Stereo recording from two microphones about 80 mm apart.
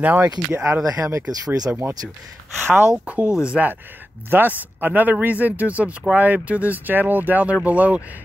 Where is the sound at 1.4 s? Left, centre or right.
Right.